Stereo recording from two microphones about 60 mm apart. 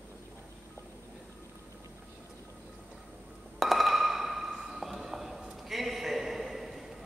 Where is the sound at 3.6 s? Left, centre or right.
Centre.